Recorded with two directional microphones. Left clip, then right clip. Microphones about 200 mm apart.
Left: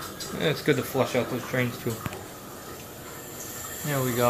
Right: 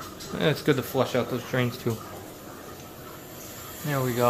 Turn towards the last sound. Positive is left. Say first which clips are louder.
# even
turn(degrees=-10)  # may be behind; listen again after turning